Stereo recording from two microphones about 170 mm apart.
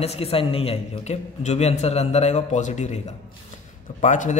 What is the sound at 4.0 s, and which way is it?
Speech, 45° left (ahead or behind).